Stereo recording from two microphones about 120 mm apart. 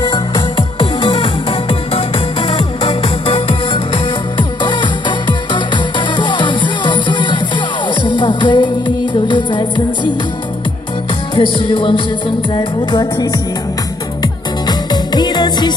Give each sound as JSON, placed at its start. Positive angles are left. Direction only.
{"t": 0.6, "sound": "music", "side_deg": 45}
{"t": 11.3, "sound": "music", "side_deg": 45}
{"t": 12.5, "sound": "music", "side_deg": 35}